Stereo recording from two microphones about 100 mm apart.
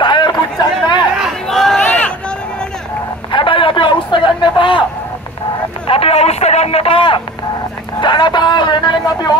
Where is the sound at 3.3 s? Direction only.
60° left (ahead or behind).